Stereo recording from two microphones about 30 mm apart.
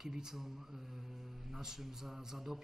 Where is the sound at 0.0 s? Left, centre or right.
Centre.